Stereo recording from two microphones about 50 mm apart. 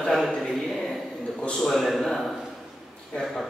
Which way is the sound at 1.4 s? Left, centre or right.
Centre.